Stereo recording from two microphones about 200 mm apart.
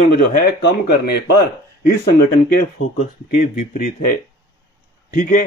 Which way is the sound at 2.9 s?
40° left (ahead or behind).